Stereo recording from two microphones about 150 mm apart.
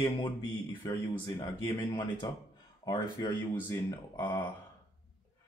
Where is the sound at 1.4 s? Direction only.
30° left (ahead or behind).